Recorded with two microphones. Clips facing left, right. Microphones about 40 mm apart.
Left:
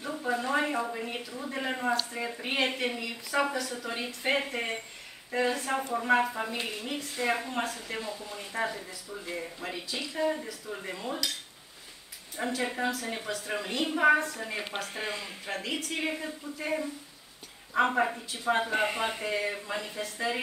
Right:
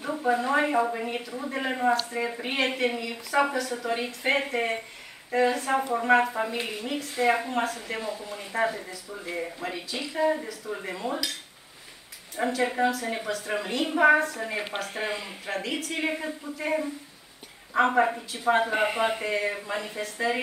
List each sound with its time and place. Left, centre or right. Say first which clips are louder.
0.0 s speech: right 5 dB; centre
12.4 s speech: right 6 dB; centre